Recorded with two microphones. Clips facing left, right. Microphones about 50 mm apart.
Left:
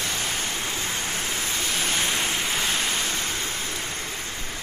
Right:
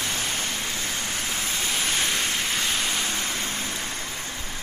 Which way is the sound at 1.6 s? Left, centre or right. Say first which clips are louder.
Even; centre.